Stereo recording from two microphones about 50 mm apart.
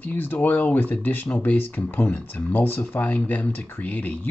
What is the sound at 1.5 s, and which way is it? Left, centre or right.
Speech, left.